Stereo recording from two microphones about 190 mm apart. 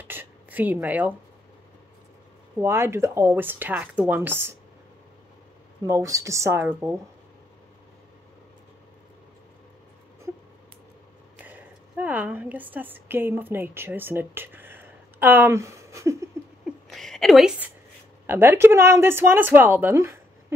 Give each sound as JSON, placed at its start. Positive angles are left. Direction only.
{"t": 0.0, "sound": "a sound", "side_deg": -10}
{"t": 2.5, "sound": "speech", "side_deg": -15}
{"t": 5.9, "sound": "speech", "side_deg": -15}
{"t": 11.3, "sound": "a woman's voice", "side_deg": -10}
{"t": 16.9, "sound": "a woman's voice", "side_deg": 0}